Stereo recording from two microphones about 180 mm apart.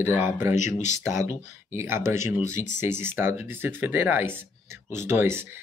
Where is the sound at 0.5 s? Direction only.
40° left (ahead or behind).